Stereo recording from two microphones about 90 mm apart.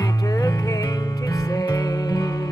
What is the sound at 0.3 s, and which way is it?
Music, 40° left (ahead or behind).